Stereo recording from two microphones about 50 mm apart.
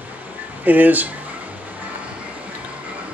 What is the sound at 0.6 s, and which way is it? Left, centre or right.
Speech, right.